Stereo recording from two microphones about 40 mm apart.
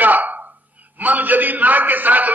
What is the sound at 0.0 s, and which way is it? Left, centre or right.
A man's voice, right.